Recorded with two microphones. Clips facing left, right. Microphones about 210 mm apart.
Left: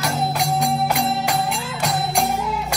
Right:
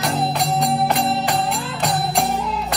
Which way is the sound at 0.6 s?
Centre (ahead or behind).